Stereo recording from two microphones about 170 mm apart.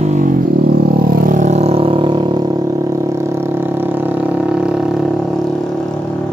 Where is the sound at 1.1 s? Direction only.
50° right (ahead or behind); by 2.4 s 30° right (ahead or behind).